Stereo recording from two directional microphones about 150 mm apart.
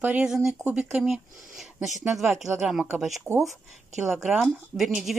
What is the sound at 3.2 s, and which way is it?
Speech, 20° right (ahead or behind).